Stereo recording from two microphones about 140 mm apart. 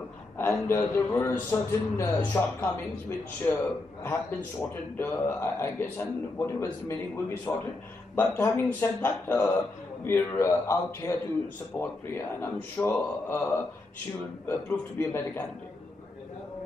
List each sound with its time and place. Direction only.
0.4 s a man's voice: 15° left (ahead or behind)
4.0 s a man's voice: 15° left (ahead or behind)